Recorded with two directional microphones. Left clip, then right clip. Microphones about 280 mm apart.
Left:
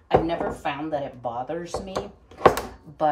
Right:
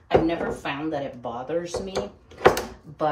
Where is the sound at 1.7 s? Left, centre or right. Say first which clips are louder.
Right 1 dB; left.